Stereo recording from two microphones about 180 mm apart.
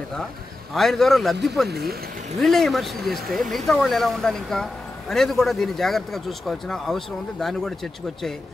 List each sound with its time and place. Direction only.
0.7 s a man's voice: centre (ahead or behind)
1.7 s speech: 60° right (ahead or behind)
2.4 s a man's voice: centre (ahead or behind)